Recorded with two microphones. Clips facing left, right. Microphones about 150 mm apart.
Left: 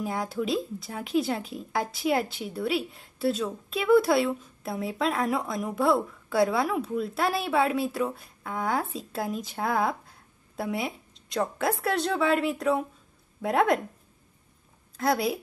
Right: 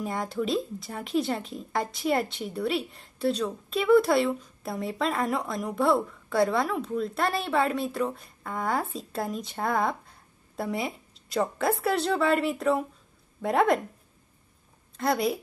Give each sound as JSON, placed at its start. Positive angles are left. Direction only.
{"t": 0.0, "sound": "a woman's voice", "side_deg": 0}
{"t": 15.0, "sound": "speech", "side_deg": 0}